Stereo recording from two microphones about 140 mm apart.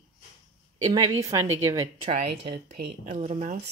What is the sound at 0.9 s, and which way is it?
A woman's voice, 25° right (ahead or behind).